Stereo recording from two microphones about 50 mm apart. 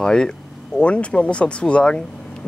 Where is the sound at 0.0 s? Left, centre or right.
Centre.